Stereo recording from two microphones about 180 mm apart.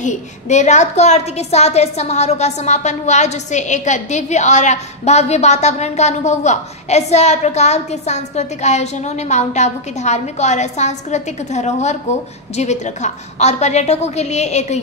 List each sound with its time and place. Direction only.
0.0 s a woman's voice: 40° left (ahead or behind)